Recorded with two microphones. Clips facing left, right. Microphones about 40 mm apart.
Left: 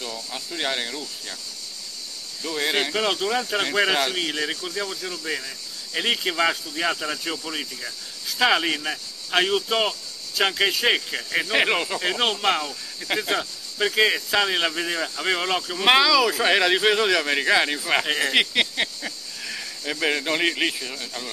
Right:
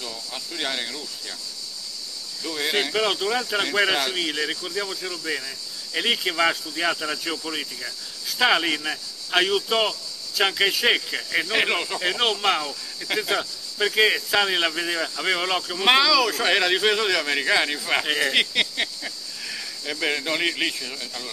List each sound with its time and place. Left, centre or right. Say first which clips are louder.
0.3 s speech: left 2 dB; centre
2.4 s speech: left 1 dB; centre